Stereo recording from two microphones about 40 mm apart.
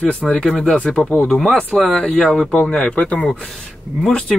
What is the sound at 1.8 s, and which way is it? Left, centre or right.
Speech, centre.